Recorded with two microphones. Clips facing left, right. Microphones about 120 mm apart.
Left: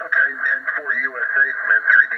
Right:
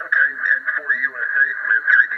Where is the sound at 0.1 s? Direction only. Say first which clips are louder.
Right 2 dB; 35° left (ahead or behind).